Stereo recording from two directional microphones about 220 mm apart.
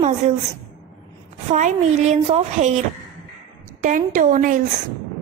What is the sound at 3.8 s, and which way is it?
Speech, 35° right (ahead or behind).